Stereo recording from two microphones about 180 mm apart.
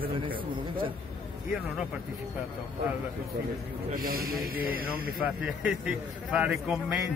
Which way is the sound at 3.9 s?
50° right (ahead or behind).